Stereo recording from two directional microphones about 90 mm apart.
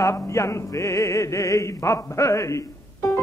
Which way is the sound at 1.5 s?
35° left (ahead or behind).